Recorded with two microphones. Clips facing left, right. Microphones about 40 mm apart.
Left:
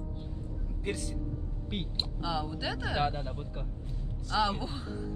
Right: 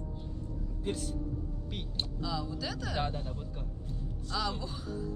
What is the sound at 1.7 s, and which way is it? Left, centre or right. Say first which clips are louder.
Speech: left 4 dB; left.